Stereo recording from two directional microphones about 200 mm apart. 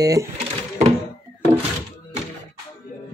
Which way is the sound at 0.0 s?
15° right (ahead or behind).